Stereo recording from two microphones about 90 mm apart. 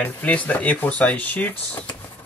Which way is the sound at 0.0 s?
15° left (ahead or behind).